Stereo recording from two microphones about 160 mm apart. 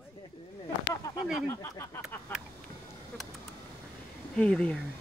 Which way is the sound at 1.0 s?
20° left (ahead or behind).